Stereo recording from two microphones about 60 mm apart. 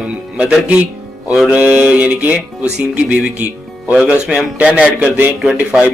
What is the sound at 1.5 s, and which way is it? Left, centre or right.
Music, centre.